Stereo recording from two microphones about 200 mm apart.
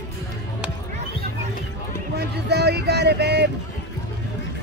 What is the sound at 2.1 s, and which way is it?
Vehicle, 55° right (ahead or behind).